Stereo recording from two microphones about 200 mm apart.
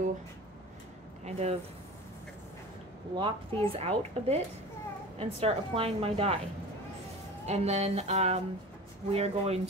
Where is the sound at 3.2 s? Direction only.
25° right (ahead or behind).